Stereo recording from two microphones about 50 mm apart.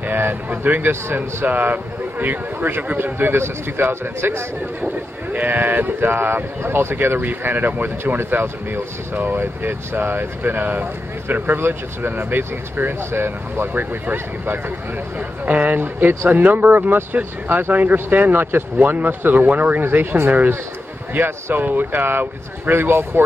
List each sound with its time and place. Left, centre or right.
0.0 s speech: right
4.8 s speech: right
7.2 s speech: right
9.1 s speech: right
15.1 s speech: right
21.5 s speech: right